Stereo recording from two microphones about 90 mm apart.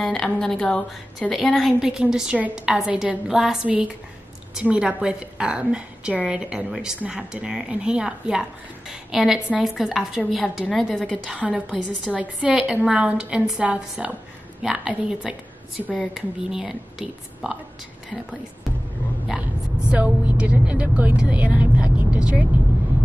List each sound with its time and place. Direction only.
0.0 s a woman's voice: 5° left (ahead or behind)
11.2 s a woman's voice: 10° right (ahead or behind)
19.9 s a woman's voice: 15° right (ahead or behind)